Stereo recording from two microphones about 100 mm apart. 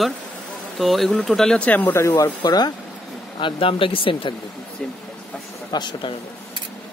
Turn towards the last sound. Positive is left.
turn(degrees=50)  # may be behind; listen again after turning